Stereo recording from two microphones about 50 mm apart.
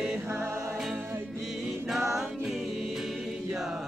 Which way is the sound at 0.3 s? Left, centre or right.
Right.